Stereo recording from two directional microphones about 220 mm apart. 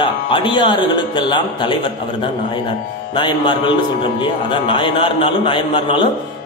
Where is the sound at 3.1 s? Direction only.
20° left (ahead or behind).